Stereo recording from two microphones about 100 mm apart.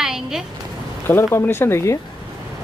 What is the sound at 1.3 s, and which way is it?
Speech, 25° left (ahead or behind).